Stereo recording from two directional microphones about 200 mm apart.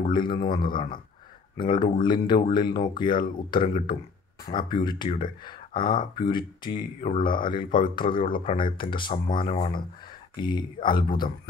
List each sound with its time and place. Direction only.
0.3 s speech: 20° left (ahead or behind)
1.6 s speech: 25° left (ahead or behind)